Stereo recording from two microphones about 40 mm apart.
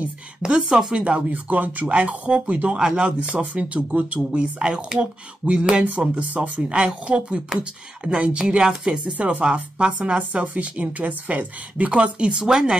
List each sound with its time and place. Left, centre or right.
0.4 s speech: right
0.9 s speech: right
4.3 s speech: right
10.1 s speech: right
12.4 s speech: centre